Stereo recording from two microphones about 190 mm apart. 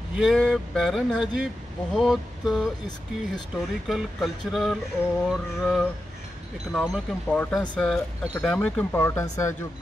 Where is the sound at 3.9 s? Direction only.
Centre (ahead or behind).